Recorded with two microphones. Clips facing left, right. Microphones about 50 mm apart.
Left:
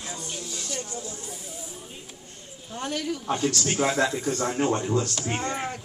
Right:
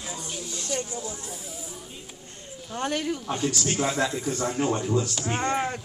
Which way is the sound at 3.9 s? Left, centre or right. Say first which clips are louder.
Left 2 dB; centre.